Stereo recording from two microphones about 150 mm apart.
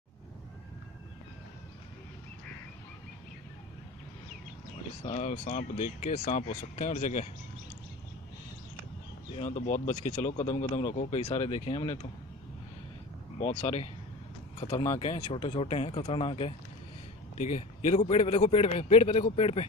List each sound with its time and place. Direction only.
5.1 s speech: 45° left (ahead or behind)
9.3 s speech: 50° left (ahead or behind)
13.4 s speech: 50° left (ahead or behind)
14.9 s speech: 45° left (ahead or behind)
17.4 s speech: 55° left (ahead or behind)